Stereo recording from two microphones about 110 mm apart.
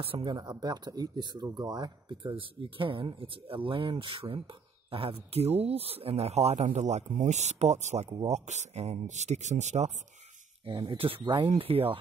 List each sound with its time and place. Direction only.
0.0 s speech: 50° right (ahead or behind); by 9.9 s 90° right
10.6 s speech: 50° right (ahead or behind)